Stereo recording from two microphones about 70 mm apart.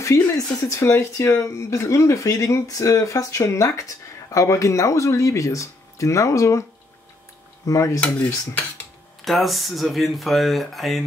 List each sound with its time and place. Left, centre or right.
0.0 s speech: left
7.6 s speech: left
9.2 s speech: centre